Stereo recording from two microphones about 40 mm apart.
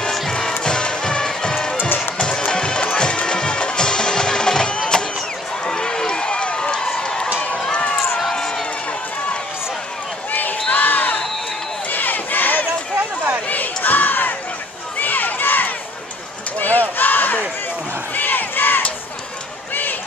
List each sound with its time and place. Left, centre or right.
0.3 s music: centre
1.5 s run: centre
2.0 s music: left
5.7 s run: centre
7.0 s a sound: left
8.3 s run: centre
10.7 s crowd: left
13.8 s battle cry: left
15.0 s run: left
16.5 s a sound: left
16.9 s battle cry: left
18.1 s crowd: left
19.7 s run: left